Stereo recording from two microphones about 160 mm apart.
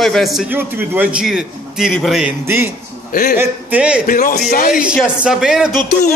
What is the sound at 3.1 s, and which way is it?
Speech, 65° left (ahead or behind).